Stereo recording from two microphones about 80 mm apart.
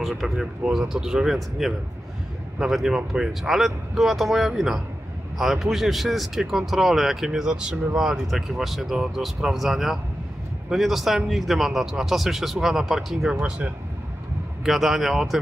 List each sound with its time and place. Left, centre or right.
0.2 s speech: centre
14.6 s speech: centre